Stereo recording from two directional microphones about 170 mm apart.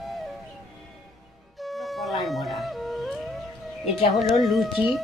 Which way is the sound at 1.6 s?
Centre (ahead or behind).